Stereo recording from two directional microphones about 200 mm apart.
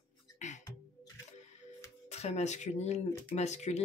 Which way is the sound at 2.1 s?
35° left (ahead or behind).